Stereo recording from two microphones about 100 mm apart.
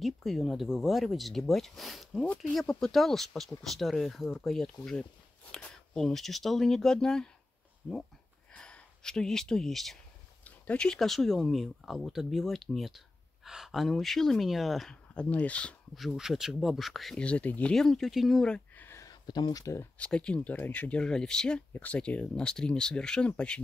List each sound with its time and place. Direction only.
0.0 s speech: centre (ahead or behind)
8.5 s speech: 10° left (ahead or behind)
15.9 s speech: 5° right (ahead or behind)
17.2 s speech: 15° left (ahead or behind)
17.7 s speech: 5° left (ahead or behind)
18.8 s a sound: 25° left (ahead or behind)
19.0 s speech: 45° left (ahead or behind)
20.0 s speech: 10° left (ahead or behind)